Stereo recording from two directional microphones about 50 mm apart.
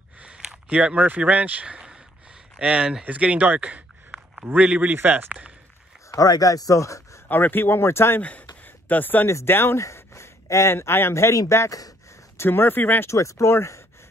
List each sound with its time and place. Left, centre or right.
0.2 s a sound: centre
2.6 s speech: centre
3.1 s speech: right
6.7 s speech: left
7.2 s speech: left
7.8 s speech: left
8.2 s a sound: left
9.5 s speech: left
9.8 s speech: left
12.4 s speech: left
13.0 s speech: left